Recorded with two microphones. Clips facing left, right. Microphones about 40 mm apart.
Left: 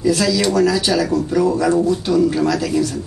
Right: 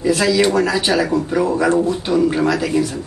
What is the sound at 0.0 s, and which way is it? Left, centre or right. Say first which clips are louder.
Speech: right 2 dB; right.